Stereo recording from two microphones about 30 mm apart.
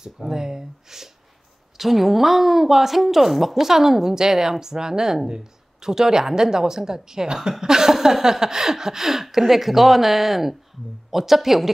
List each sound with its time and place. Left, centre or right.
0.0 s a woman's voice: centre